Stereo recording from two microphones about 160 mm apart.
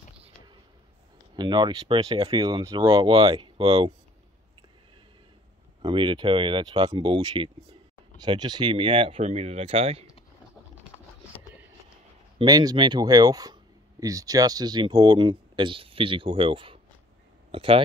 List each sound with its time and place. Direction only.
1.3 s speech: 30° right (ahead or behind)
5.8 s speech: 30° right (ahead or behind)
12.4 s speech: 25° right (ahead or behind)